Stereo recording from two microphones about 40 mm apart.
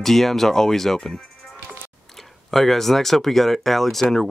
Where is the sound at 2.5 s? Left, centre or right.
Centre.